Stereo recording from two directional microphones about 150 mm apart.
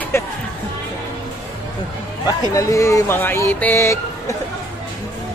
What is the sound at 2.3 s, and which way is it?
Speech, 20° left (ahead or behind).